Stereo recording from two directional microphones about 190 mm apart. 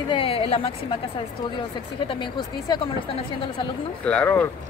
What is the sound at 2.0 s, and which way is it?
Speech, 25° left (ahead or behind).